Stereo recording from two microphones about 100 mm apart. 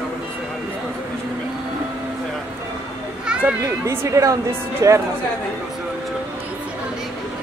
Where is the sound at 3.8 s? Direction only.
25° right (ahead or behind).